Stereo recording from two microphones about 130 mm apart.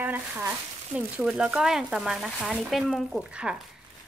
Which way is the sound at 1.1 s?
5° right (ahead or behind).